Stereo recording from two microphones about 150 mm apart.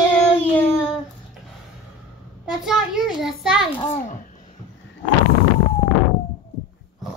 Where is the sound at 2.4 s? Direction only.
5° right (ahead or behind).